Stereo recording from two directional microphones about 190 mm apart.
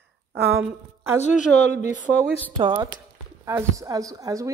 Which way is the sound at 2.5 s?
25° right (ahead or behind).